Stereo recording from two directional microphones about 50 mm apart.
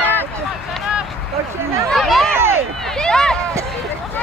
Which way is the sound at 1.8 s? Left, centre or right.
Centre.